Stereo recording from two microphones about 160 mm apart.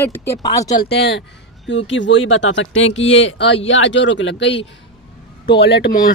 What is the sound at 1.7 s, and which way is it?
Speech, 90° left.